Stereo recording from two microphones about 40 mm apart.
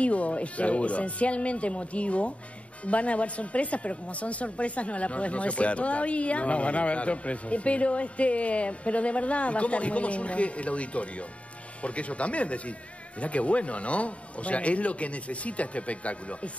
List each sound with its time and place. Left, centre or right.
0.0 s speech: left